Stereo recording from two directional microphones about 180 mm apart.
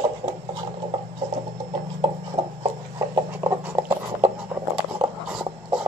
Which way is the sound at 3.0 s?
15° right (ahead or behind).